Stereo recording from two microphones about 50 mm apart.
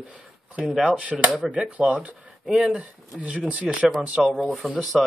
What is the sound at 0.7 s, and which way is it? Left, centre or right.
Speech, centre.